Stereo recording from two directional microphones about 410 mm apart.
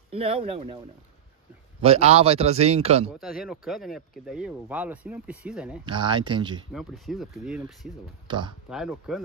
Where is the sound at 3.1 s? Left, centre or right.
Centre.